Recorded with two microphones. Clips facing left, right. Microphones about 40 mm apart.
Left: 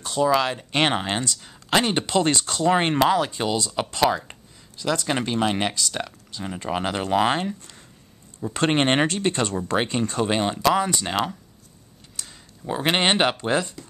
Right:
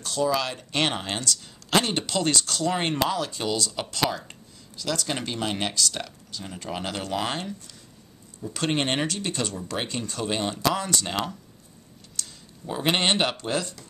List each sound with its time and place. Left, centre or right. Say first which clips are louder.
0.0 s speech: left 5 dB; left
8.4 s speech: left 5 dB; left